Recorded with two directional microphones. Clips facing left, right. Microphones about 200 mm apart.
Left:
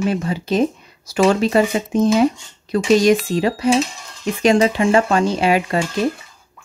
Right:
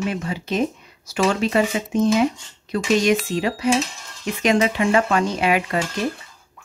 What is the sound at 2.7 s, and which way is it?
Speech, 35° left (ahead or behind).